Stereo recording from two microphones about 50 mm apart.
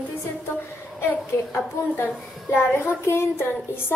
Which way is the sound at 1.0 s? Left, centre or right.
Left.